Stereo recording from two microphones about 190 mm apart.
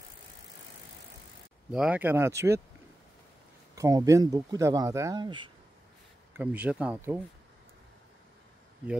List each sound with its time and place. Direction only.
1.7 s speech: 5° right (ahead or behind)
3.7 s speech: 15° right (ahead or behind)
6.3 s speech: 5° right (ahead or behind)